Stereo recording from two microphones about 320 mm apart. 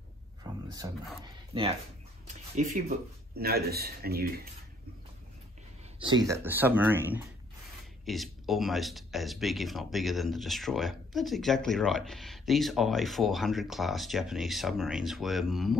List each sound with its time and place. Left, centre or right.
0.4 s a sound: centre
1.5 s a man's voice: centre
6.2 s speech: centre